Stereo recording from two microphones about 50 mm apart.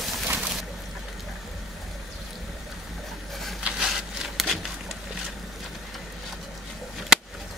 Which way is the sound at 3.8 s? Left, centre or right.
Centre.